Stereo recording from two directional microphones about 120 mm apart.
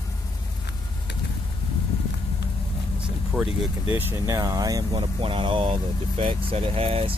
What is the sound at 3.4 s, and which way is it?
Speech, 15° right (ahead or behind).